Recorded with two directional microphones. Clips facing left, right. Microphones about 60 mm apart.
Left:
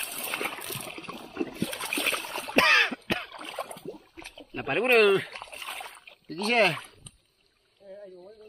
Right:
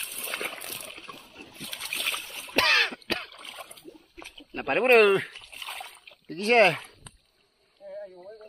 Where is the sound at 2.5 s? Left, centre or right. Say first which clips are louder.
Left 2 dB; left.